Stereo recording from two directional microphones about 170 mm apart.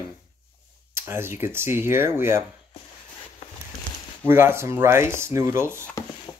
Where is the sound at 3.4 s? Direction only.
40° left (ahead or behind).